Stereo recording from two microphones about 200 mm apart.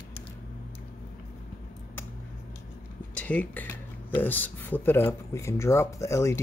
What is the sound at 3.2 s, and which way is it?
Speech, 5° left (ahead or behind).